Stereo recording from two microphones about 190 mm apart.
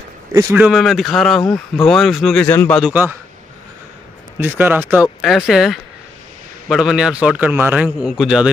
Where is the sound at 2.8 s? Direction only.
10° right (ahead or behind).